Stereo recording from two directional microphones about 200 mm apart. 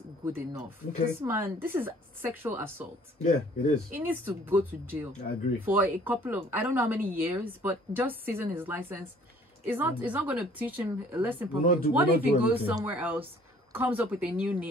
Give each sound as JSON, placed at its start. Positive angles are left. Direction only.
{"t": 0.2, "sound": "speech", "side_deg": -10}
{"t": 3.2, "sound": "speech", "side_deg": 35}
{"t": 3.9, "sound": "speech", "side_deg": -10}